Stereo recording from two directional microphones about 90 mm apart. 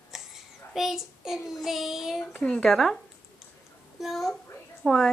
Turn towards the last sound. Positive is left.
turn(degrees=5)  # may be behind; listen again after turning